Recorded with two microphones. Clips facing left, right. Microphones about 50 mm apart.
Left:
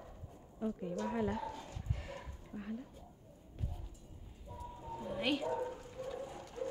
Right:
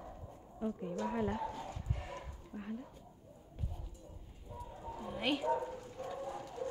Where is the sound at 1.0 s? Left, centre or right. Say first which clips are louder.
Right 1 dB; centre.